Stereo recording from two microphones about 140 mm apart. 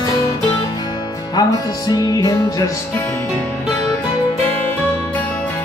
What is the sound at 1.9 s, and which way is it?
Music, 25° left (ahead or behind).